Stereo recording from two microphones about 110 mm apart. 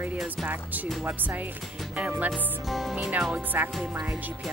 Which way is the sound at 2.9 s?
15° right (ahead or behind).